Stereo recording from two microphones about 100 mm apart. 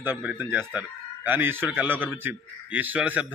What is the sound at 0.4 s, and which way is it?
Speech, 20° right (ahead or behind).